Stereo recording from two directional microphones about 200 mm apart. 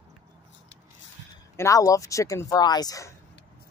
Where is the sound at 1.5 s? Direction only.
15° left (ahead or behind).